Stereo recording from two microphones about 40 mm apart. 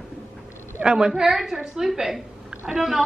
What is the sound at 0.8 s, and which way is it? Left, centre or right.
Speech, right.